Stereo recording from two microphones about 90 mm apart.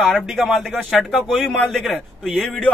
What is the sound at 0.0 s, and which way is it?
A man's voice, centre (ahead or behind).